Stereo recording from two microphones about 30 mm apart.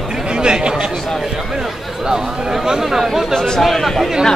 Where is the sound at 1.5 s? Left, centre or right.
Centre.